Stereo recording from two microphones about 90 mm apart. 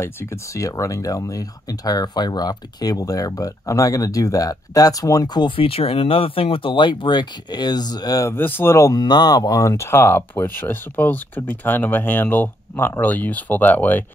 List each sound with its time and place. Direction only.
0.0 s speech: 30° left (ahead or behind); by 5.5 s 50° left (ahead or behind)
5.6 s speech: 90° left; by 8.3 s 45° left (ahead or behind)
8.3 s speech: 25° left (ahead or behind)
8.7 s speech: 40° left (ahead or behind); by 14.0 s 20° left (ahead or behind)